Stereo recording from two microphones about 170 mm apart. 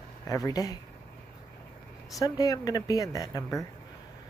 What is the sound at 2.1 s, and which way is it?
Speech, 20° left (ahead or behind).